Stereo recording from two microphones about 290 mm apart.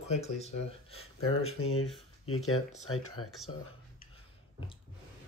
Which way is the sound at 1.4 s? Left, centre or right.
Left.